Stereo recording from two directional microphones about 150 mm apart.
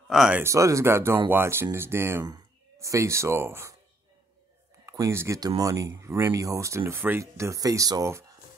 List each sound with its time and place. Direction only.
0.1 s speech: centre (ahead or behind)
0.4 s speech: 20° right (ahead or behind)
4.8 s speech: 20° right (ahead or behind)